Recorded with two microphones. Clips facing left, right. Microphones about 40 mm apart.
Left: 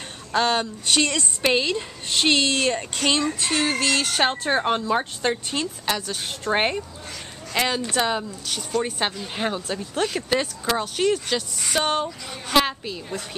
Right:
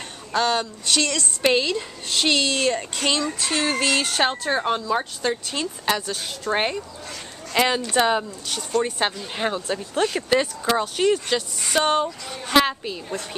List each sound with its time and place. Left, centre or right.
0.3 s speech: centre
1.4 s speech: centre
1.7 s speech: centre
2.8 s speech: centre
4.4 s speech: centre
5.6 s speech: centre
6.5 s speech: centre
7.5 s speech: centre